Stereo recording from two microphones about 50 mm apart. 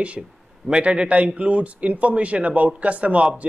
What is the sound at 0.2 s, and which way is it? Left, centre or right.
A man's voice, centre.